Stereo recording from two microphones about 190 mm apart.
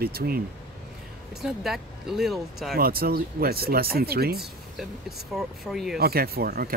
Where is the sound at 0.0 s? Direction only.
55° right (ahead or behind).